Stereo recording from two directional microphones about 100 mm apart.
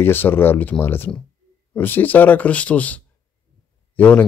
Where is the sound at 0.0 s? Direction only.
20° left (ahead or behind).